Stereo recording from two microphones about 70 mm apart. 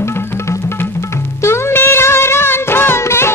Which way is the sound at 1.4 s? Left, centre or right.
Left.